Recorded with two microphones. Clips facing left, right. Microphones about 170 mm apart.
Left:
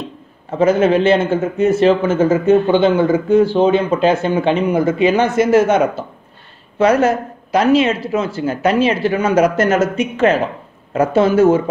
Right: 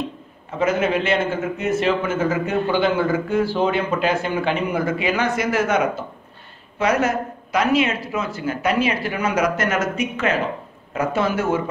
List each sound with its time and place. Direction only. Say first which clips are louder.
0.6 s a man's voice: left 7 dB; 30° left (ahead or behind)
6.8 s a man's voice: left 7 dB; 30° left (ahead or behind)